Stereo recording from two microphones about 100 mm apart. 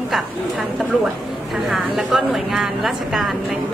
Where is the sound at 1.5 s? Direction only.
5° right (ahead or behind).